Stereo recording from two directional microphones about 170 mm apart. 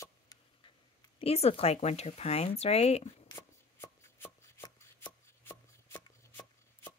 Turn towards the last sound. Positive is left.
turn(degrees=15)  # may be behind; listen again after turning